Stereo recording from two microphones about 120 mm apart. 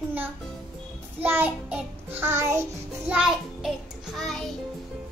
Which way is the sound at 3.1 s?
5° right (ahead or behind).